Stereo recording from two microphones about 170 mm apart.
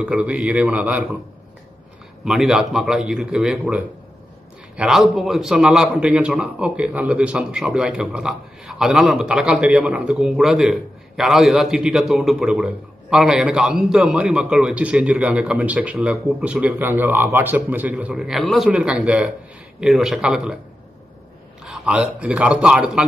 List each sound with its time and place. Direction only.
0.0 s a man's voice: 5° right (ahead or behind)
2.2 s a man's voice: centre (ahead or behind)
21.6 s a man's voice: 5° right (ahead or behind)